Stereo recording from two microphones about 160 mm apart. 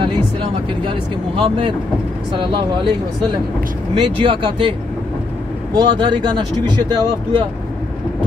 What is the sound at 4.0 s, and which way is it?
Speech, 30° right (ahead or behind).